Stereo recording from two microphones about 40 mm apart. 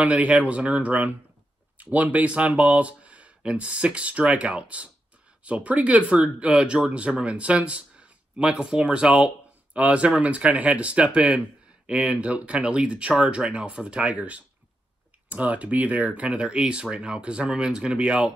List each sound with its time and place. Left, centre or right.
0.0 s speech: right
9.8 s speech: right